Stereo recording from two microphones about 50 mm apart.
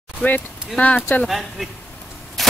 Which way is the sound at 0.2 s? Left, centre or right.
Left.